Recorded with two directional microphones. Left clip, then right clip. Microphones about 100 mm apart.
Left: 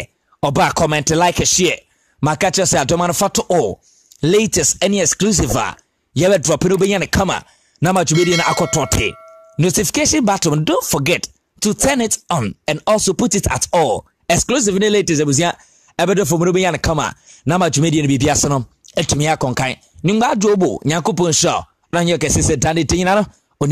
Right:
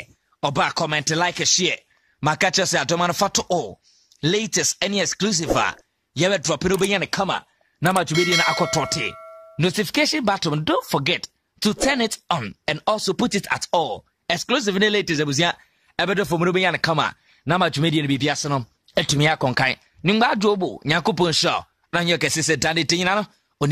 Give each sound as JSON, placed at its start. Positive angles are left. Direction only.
{"t": 0.0, "sound": "speech", "side_deg": 55}
{"t": 4.2, "sound": "speech", "side_deg": 55}
{"t": 8.1, "sound": "ding", "side_deg": 0}
{"t": 8.7, "sound": "speech", "side_deg": 60}
{"t": 19.0, "sound": "speech", "side_deg": 20}
{"t": 20.2, "sound": "speech", "side_deg": 40}
{"t": 20.7, "sound": "speech", "side_deg": 65}
{"t": 21.0, "sound": "speech", "side_deg": 35}
{"t": 21.3, "sound": "speech", "side_deg": 55}